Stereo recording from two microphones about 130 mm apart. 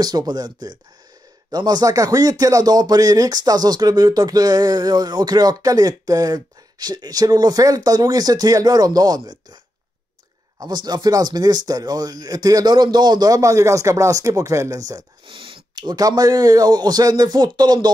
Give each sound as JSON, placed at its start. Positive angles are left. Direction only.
{"t": 0.0, "sound": "speech", "side_deg": -30}
{"t": 10.6, "sound": "speech", "side_deg": -30}
{"t": 15.2, "sound": "speech", "side_deg": -45}